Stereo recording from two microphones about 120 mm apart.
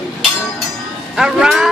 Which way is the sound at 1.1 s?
5° right (ahead or behind).